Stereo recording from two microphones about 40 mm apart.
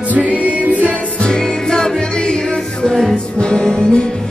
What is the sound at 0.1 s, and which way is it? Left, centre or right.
Music, right.